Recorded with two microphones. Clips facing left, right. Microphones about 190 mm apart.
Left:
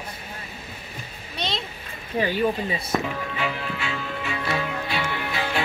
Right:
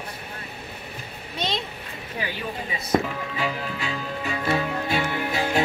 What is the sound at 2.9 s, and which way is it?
Music, 35° right (ahead or behind).